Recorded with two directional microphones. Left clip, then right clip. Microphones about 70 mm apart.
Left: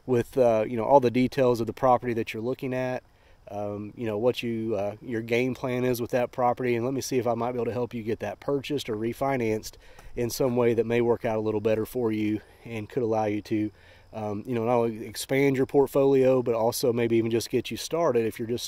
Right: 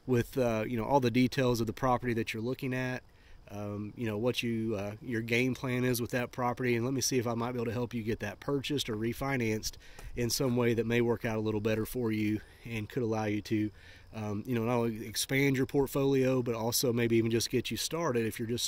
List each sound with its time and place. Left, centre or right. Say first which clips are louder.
0.1 s speech: left 8 dB; left
4.0 s speech: left 6 dB; left
9.0 s speech: left 6 dB; left